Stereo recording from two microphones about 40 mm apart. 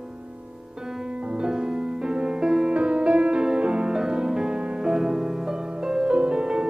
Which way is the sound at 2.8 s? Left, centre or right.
Right.